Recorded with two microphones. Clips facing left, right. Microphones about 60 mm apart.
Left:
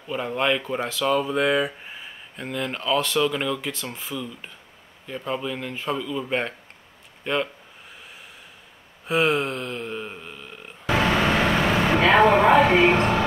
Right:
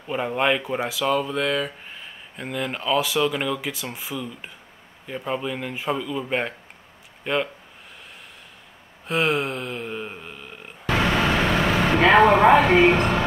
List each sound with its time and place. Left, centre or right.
0.0 s speech: centre
9.0 s a sound: centre
10.9 s vehicle: centre
12.0 s speech: centre